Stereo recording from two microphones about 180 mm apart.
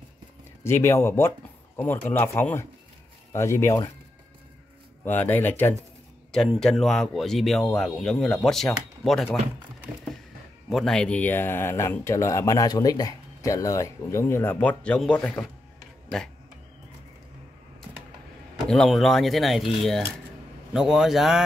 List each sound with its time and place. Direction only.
0.7 s speech: 15° left (ahead or behind)
5.0 s speech: 10° left (ahead or behind)
10.7 s speech: centre (ahead or behind)
18.7 s speech: centre (ahead or behind)